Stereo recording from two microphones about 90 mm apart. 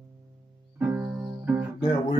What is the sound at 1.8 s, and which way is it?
Music, 65° left (ahead or behind).